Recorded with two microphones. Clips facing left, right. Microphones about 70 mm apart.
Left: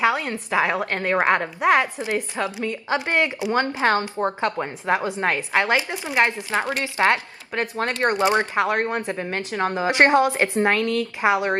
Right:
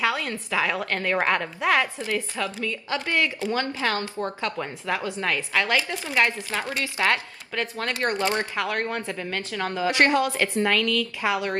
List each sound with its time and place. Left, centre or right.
0.0 s speech: left